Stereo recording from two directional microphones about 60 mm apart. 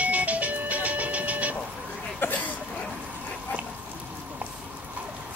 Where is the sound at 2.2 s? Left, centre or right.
Left.